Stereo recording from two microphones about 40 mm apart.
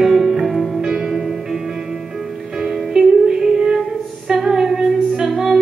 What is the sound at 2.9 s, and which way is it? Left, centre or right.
Music, centre.